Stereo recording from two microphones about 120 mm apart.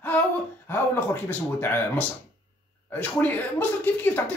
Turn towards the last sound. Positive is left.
turn(degrees=15)  # may be behind; listen again after turning